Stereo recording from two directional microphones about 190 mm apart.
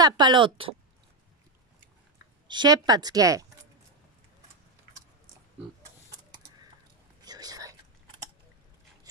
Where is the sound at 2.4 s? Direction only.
20° right (ahead or behind).